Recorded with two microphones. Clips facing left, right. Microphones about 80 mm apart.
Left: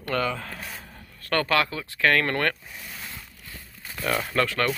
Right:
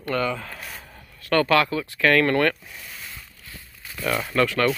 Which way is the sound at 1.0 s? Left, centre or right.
Left.